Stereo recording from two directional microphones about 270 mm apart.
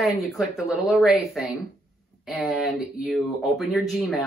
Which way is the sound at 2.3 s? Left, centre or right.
Centre.